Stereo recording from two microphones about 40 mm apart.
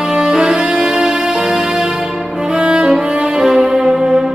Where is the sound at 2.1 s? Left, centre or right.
Right.